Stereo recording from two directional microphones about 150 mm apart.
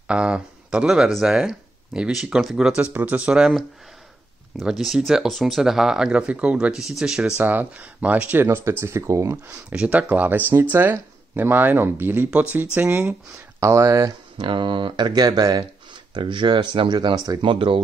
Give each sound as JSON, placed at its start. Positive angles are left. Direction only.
{"t": 0.1, "sound": "speech", "side_deg": -5}
{"t": 14.5, "sound": "speech", "side_deg": -35}